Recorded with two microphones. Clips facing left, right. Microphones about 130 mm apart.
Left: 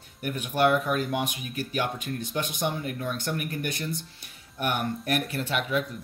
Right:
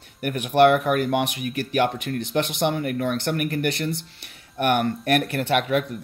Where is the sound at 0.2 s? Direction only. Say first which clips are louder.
Right 7 dB; 65° right (ahead or behind).